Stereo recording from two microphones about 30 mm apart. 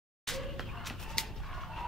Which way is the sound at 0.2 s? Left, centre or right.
Centre.